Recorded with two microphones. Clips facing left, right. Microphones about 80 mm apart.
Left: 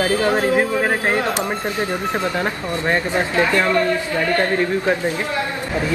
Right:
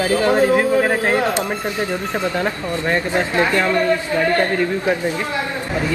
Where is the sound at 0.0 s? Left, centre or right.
Left.